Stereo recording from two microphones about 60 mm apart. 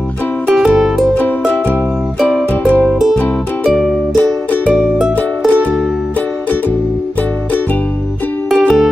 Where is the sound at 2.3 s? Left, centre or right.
Left.